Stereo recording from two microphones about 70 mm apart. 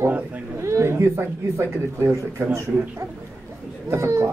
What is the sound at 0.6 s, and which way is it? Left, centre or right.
Speech, right.